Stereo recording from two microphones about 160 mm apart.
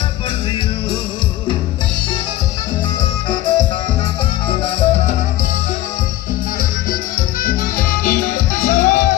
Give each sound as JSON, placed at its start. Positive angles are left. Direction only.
{"t": 3.3, "sound": "music", "side_deg": 30}
{"t": 4.6, "sound": "music", "side_deg": 35}
{"t": 7.4, "sound": "music", "side_deg": 60}